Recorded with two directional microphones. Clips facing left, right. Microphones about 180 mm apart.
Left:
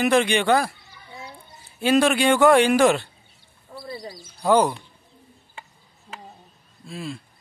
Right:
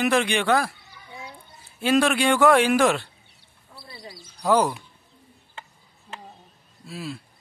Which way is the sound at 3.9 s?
35° left (ahead or behind).